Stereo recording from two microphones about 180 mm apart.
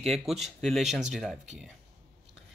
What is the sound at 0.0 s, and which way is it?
Speech, centre (ahead or behind).